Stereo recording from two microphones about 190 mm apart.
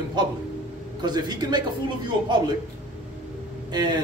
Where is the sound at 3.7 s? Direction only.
20° right (ahead or behind).